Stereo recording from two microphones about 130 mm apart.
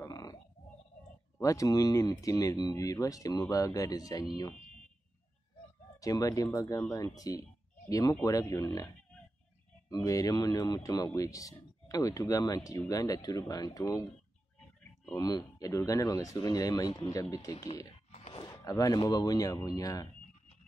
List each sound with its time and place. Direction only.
0.0 s a sound: 25° left (ahead or behind)
1.4 s speech: 25° left (ahead or behind)
5.9 s speech: 25° left (ahead or behind)
15.1 s speech: 30° left (ahead or behind)
18.1 s a sound: 60° left (ahead or behind)
18.4 s speech: 25° left (ahead or behind)